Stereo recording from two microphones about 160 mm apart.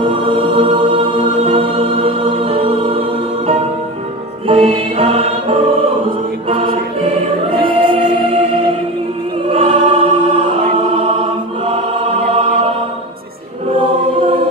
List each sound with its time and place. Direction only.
0.0 s music: 35° right (ahead or behind)
4.5 s music: 35° right (ahead or behind)
6.5 s choir: 35° right (ahead or behind)
9.5 s choir: 35° right (ahead or behind)